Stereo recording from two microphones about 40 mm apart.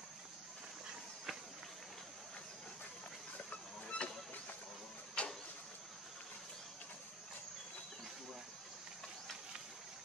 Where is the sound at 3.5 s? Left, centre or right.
Left.